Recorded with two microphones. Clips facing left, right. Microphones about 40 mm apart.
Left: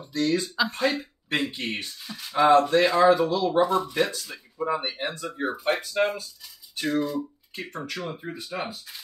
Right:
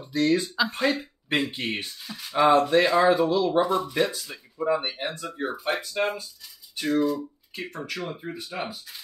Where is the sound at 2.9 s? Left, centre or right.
Centre.